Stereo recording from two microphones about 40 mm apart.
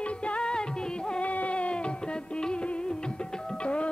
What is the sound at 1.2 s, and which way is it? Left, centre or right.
Music, left.